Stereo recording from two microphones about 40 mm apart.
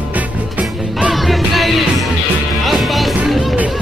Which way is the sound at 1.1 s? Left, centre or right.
Centre.